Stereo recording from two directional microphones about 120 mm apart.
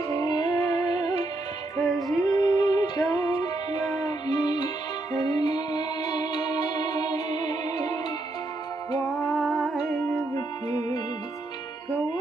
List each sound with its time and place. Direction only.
0.1 s music: 35° left (ahead or behind)
1.8 s music: centre (ahead or behind)
2.2 s music: 35° left (ahead or behind)
9.2 s music: 5° left (ahead or behind)
10.3 s music: 30° left (ahead or behind)